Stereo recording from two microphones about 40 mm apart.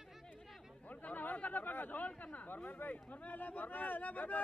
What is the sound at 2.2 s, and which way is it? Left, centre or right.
Speech, left.